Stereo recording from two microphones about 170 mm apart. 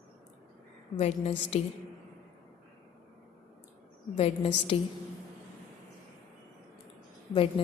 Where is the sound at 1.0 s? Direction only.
35° left (ahead or behind).